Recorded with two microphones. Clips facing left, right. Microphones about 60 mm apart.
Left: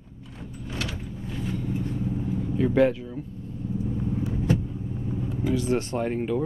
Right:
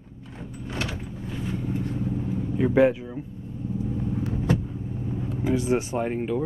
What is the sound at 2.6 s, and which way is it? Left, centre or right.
Speech, centre.